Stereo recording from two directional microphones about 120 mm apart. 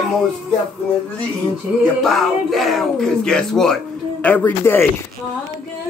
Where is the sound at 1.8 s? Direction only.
Centre (ahead or behind); by 4.9 s 20° left (ahead or behind).